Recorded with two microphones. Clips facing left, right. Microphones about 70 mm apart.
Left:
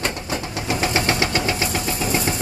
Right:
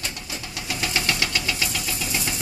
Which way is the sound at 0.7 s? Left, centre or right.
Left.